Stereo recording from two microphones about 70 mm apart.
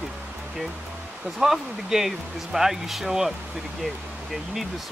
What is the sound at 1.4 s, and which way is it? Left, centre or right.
Speech, centre.